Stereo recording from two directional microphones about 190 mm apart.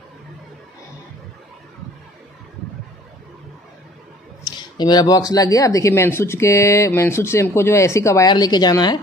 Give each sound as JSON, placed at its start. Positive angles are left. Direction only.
{"t": 4.6, "sound": "speech", "side_deg": 20}